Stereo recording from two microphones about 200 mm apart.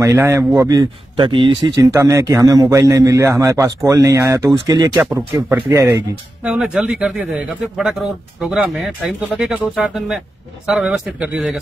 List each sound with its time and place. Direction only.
0.0 s a man's voice: 15° right (ahead or behind)
4.9 s a man's voice: 5° right (ahead or behind)